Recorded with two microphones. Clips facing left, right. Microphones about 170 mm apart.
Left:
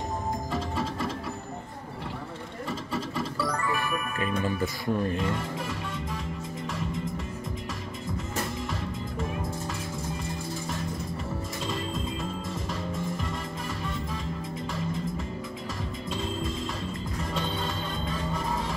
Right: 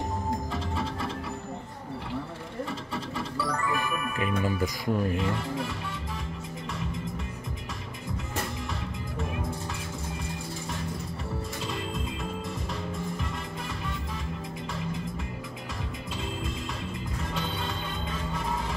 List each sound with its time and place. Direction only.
3.7 s music: 15° right (ahead or behind)
4.4 s speech: 15° right (ahead or behind)